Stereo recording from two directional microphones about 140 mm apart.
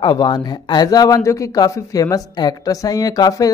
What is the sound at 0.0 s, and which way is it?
Speech, 30° left (ahead or behind).